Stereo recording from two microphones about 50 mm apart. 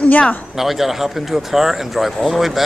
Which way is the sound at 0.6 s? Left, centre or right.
Centre.